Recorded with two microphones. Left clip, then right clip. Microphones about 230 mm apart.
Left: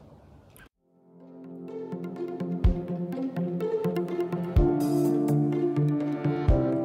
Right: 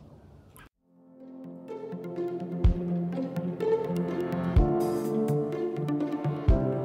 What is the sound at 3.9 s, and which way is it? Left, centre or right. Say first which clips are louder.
Music: left 2 dB; left.